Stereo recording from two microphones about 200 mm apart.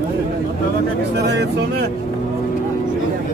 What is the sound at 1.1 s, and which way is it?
Speech, 55° right (ahead or behind).